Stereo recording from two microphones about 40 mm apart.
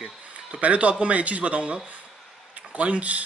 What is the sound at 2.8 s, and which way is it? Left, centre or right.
Speech, right.